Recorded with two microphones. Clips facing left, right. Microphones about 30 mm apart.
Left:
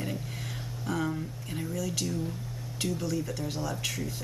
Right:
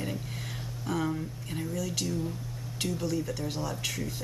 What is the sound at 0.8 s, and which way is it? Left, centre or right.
Speech, centre.